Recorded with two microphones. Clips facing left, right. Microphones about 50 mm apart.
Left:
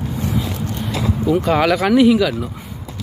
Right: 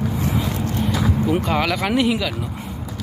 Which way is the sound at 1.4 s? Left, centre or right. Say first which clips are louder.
Left 5 dB; centre.